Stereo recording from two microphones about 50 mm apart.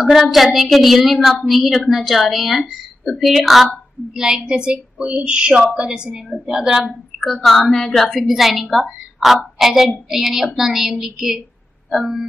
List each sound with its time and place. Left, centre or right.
0.1 s a woman's voice: centre
7.4 s a woman's voice: centre